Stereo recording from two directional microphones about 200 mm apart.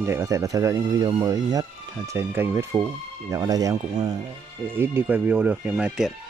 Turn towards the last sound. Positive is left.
turn(degrees=-5)  # may be behind; listen again after turning